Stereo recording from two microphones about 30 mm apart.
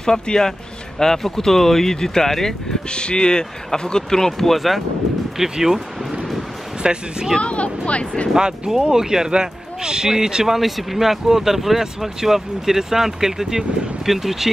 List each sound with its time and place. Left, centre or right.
0.0 s speech: left
2.9 s speech: left
4.3 s speech: centre
5.4 s speech: centre
6.8 s speech: right
7.3 s speech: left
8.4 s speech: right
10.0 s speech: centre